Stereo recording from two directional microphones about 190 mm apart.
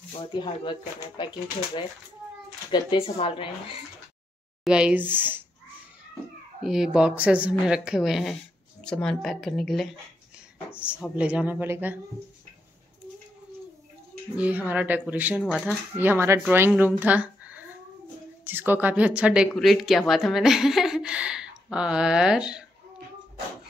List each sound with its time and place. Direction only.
0.2 s speech: 25° left (ahead or behind)
2.7 s speech: 25° left (ahead or behind)
4.6 s speech: 5° right (ahead or behind)
6.6 s speech: centre (ahead or behind)
10.9 s speech: 5° right (ahead or behind)
14.3 s speech: 10° right (ahead or behind)